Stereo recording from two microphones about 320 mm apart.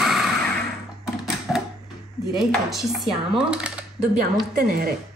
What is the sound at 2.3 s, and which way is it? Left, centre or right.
A woman's voice, centre.